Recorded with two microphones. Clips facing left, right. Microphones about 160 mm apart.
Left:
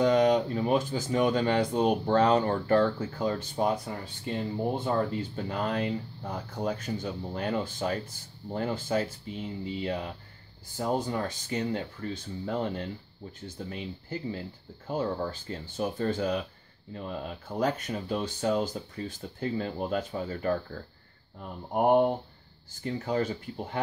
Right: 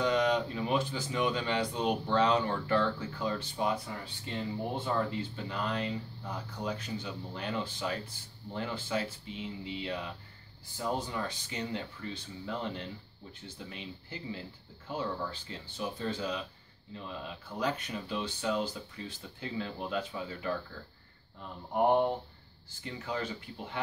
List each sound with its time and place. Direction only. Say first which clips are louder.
0.0 s speech: left 6 dB; 45° left (ahead or behind)
22.8 s speech: left 7 dB; 45° left (ahead or behind)